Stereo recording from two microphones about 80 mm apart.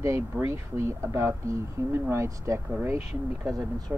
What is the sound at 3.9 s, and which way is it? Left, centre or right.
Speech, right.